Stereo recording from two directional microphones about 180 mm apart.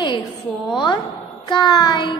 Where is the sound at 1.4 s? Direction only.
25° left (ahead or behind).